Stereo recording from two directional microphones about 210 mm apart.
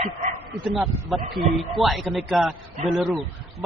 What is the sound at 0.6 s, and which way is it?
Speech, centre (ahead or behind).